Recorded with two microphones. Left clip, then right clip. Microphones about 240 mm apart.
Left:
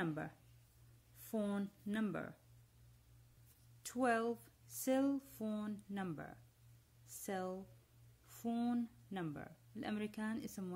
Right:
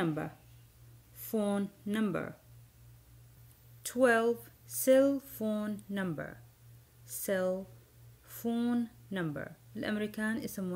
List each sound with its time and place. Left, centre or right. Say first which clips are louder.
0.0 s speech: right 8 dB; centre
3.8 s speech: right 10 dB; centre
7.1 s a sound: right 12 dB; centre
8.3 s speech: right 7 dB; centre